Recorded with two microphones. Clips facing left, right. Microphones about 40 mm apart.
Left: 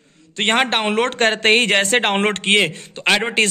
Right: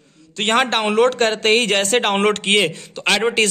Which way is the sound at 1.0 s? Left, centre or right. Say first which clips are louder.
Even; left.